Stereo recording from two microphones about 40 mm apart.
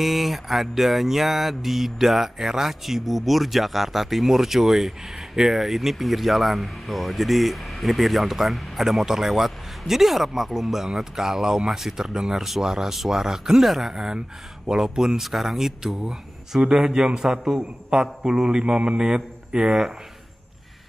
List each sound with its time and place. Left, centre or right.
0.0 s music: centre
11.0 s speech: centre
17.6 s speech: right